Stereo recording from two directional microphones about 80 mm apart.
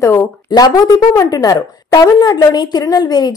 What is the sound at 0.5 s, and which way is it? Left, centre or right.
A woman's voice, left.